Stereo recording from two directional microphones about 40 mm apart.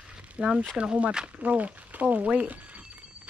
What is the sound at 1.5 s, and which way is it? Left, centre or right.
Speech, right.